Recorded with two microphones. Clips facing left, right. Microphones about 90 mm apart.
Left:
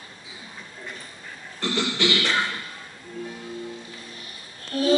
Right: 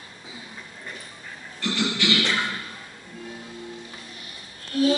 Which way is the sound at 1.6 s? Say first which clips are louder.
Left 1 dB; 35° left (ahead or behind).